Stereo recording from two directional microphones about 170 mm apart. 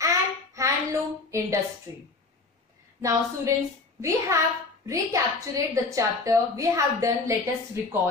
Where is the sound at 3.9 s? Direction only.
20° right (ahead or behind).